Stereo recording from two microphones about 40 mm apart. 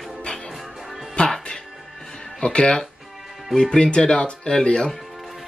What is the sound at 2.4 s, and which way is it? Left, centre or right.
Speech, left.